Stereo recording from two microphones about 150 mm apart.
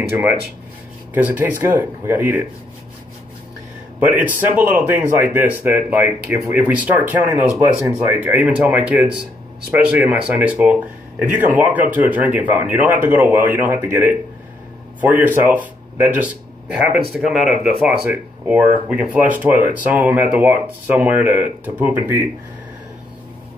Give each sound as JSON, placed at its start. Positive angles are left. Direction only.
{"t": 0.1, "sound": "speech", "side_deg": -10}
{"t": 1.4, "sound": "speech", "side_deg": -10}
{"t": 4.0, "sound": "speech", "side_deg": -10}